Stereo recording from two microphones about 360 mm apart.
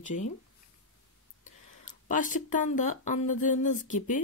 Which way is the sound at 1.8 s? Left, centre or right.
Left.